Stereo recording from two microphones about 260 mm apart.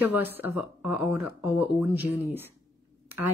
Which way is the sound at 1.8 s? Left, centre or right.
Centre.